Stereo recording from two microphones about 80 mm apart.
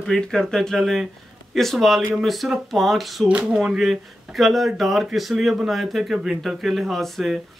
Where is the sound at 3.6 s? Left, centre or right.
Centre.